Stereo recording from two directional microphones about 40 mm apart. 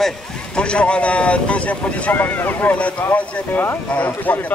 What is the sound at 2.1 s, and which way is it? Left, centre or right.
Speech, left.